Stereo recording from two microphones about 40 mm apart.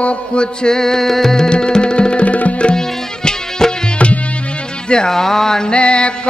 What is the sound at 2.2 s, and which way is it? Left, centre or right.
Tabla, left.